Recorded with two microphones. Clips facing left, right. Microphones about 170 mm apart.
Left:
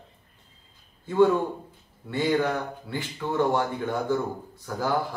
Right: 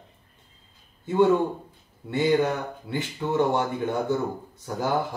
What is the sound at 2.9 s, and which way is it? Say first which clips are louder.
Speech: right 2 dB; 20° right (ahead or behind).